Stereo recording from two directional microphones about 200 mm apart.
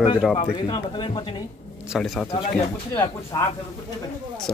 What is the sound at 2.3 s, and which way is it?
Speech, 25° left (ahead or behind).